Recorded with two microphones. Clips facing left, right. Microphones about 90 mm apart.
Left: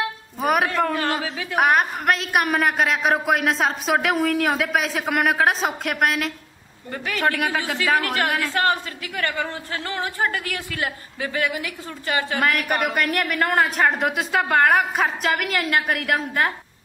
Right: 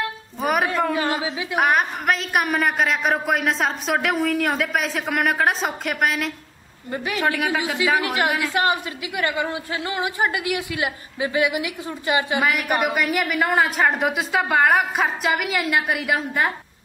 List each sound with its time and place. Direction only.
0.4 s a sound: centre (ahead or behind)
0.7 s a woman's voice: 5° right (ahead or behind)
12.4 s a woman's voice: 5° right (ahead or behind)